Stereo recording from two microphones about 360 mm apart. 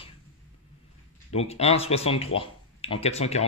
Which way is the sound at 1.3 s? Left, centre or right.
Centre.